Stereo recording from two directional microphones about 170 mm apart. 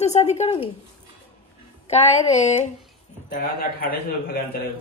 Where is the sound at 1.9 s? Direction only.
40° left (ahead or behind).